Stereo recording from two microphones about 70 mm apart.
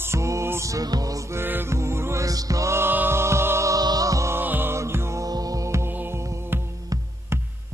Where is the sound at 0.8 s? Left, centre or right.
Right.